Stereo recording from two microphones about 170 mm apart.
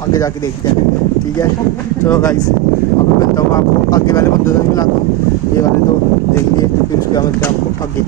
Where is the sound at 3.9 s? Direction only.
20° left (ahead or behind).